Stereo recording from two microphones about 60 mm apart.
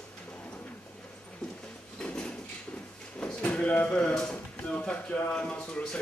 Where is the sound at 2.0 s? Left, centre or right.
Left.